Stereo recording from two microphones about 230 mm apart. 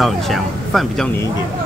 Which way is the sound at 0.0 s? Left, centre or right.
Centre.